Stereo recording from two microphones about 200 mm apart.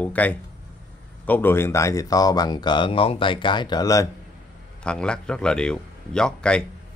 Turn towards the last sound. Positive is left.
turn(degrees=5)  # may be behind; listen again after turning